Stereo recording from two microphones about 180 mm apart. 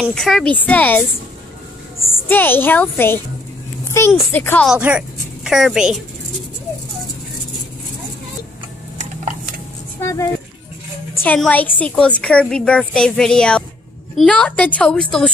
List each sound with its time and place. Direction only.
0.1 s a woman's voice: 5° left (ahead or behind)
2.1 s a woman's voice: 10° left (ahead or behind)
4.6 s a woman's voice: 5° right (ahead or behind)
8.9 s a sound: 45° right (ahead or behind)
9.9 s a woman's voice: 15° left (ahead or behind)